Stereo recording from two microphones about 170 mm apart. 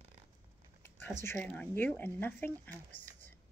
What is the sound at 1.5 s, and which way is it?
Speech, 10° left (ahead or behind).